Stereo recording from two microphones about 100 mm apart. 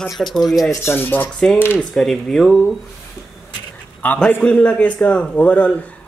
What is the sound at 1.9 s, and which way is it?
Speech, 5° left (ahead or behind).